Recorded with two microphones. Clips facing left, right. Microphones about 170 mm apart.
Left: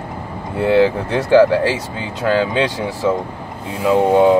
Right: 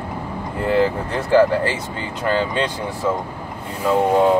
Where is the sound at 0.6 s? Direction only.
85° left.